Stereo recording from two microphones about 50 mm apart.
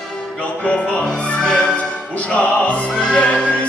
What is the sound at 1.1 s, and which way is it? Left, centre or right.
Music, left.